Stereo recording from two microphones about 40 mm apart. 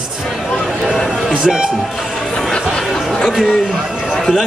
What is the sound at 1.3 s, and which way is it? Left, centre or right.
Speech, right.